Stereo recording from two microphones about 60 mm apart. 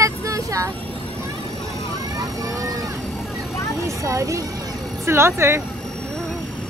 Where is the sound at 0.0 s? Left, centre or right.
Right.